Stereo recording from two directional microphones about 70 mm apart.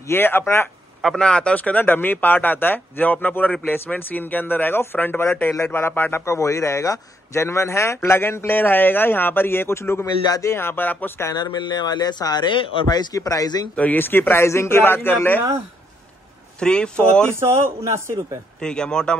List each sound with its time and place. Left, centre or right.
0.0 s speech: left
1.0 s speech: centre; by 6.2 s left
6.2 s speech: left
11.3 s speech: left
13.7 s speech: left
16.5 s speech: centre
17.3 s speech: right
18.6 s speech: centre